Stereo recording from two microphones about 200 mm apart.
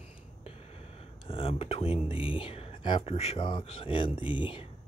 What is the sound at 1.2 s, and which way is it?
Speech, 25° left (ahead or behind).